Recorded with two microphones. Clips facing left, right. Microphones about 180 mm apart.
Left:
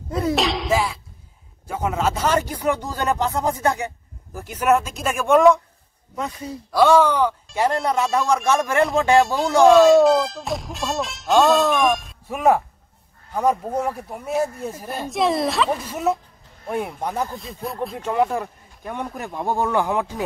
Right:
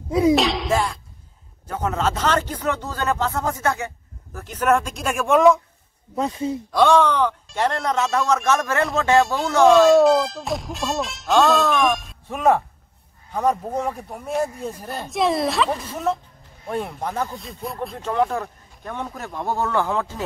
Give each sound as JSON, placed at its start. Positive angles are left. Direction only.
{"t": 0.1, "sound": "a sound", "side_deg": -5}
{"t": 1.7, "sound": "speech", "side_deg": 10}
{"t": 6.1, "sound": "a man's voice", "side_deg": -30}
{"t": 6.7, "sound": "speech", "side_deg": 5}
{"t": 8.5, "sound": "speech", "side_deg": 15}
{"t": 9.2, "sound": "speech", "side_deg": 0}
{"t": 15.0, "sound": "speech", "side_deg": 0}
{"t": 17.3, "sound": "speech", "side_deg": 0}
{"t": 17.9, "sound": "speech", "side_deg": 10}